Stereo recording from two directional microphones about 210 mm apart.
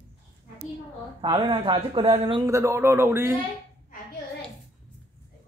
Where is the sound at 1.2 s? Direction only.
25° right (ahead or behind); by 3.4 s 10° right (ahead or behind).